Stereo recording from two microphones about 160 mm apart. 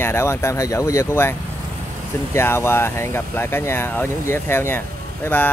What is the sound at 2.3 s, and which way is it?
Speech, 15° left (ahead or behind).